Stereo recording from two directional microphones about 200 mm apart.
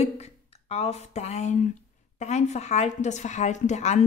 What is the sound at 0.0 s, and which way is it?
A woman's voice, 30° left (ahead or behind).